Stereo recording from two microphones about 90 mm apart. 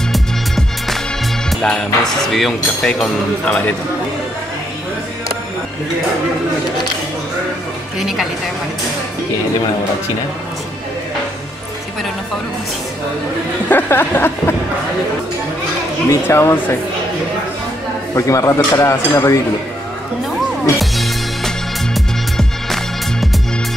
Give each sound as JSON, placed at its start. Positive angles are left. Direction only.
{"t": 0.1, "sound": "music", "side_deg": 0}
{"t": 1.5, "sound": "speech", "side_deg": 5}
{"t": 8.0, "sound": "speech", "side_deg": -5}
{"t": 13.7, "sound": "music", "side_deg": 25}
{"t": 16.1, "sound": "music", "side_deg": 30}
{"t": 18.1, "sound": "speech", "side_deg": 35}
{"t": 20.8, "sound": "music", "side_deg": 0}